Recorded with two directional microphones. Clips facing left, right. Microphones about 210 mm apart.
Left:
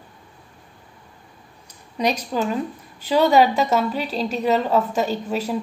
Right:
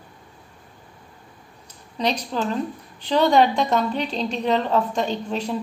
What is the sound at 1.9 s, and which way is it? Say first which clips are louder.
A woman's voice: left 2 dB; 10° left (ahead or behind).